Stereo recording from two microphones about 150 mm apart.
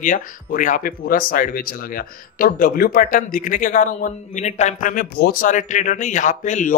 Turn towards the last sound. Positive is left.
turn(degrees=55)  # may be behind; listen again after turning